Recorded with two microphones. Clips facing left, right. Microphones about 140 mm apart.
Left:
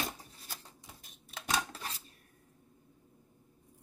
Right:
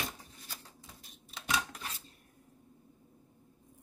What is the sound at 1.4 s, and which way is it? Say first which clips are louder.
Dishes: even; 35° left (ahead or behind).